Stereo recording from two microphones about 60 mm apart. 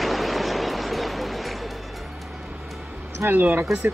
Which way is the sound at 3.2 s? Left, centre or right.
Right.